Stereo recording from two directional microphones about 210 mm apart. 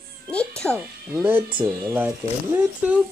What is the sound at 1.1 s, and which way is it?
Speech, 10° right (ahead or behind).